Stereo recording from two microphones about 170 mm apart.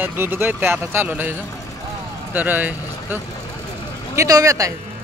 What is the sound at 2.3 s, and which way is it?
Speech, 10° right (ahead or behind).